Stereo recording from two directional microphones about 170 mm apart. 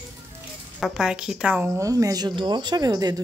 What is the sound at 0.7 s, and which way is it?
A woman's voice, 5° right (ahead or behind).